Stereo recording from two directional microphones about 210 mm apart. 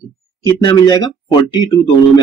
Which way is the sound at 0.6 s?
20° left (ahead or behind).